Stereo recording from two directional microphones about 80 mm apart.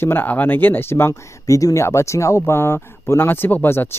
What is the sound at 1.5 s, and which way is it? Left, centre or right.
Speech, left.